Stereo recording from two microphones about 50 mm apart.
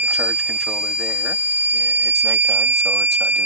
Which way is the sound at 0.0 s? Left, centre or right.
Right.